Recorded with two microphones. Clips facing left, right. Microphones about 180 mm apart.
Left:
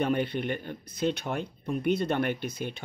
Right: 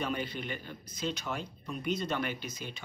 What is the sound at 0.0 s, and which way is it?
Speech, 60° left (ahead or behind).